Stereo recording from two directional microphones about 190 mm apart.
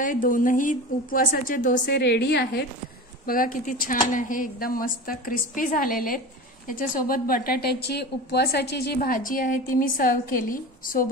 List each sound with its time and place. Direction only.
0.0 s a woman's voice: 45° left (ahead or behind)
1.9 s a woman's voice: 60° left (ahead or behind)
3.3 s a woman's voice: 50° left (ahead or behind)